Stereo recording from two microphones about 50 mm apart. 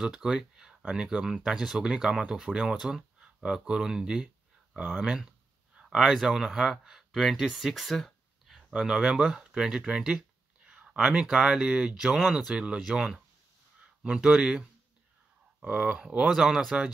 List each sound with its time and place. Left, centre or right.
0.0 s speech: centre
8.7 s speech: centre
9.5 s a sound: centre
11.0 s speech: centre
12.2 s speech: centre
12.5 s speech: centre
16.3 s speech: centre